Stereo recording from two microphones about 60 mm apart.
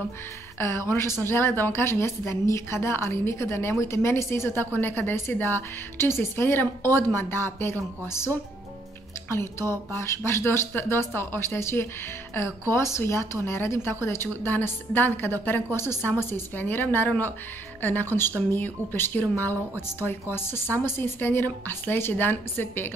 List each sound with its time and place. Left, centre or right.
0.6 s a woman's voice: left
9.3 s a woman's voice: left